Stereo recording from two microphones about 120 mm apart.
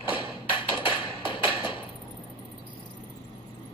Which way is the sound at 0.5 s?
45° left (ahead or behind).